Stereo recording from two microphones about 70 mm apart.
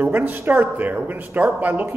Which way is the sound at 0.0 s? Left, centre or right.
Right.